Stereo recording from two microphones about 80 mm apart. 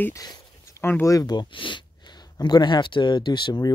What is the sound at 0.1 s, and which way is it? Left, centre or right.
Speech, left.